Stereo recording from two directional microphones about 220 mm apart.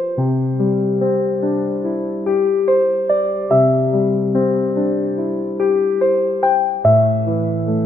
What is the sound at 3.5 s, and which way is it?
Music, 5° left (ahead or behind).